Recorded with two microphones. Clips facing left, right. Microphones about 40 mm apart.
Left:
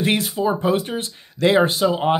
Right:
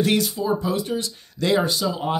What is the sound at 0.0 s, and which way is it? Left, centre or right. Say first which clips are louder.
Speech: left 1 dB; left.